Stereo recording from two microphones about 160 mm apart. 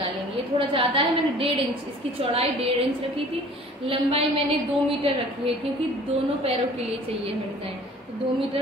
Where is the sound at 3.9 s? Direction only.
35° right (ahead or behind).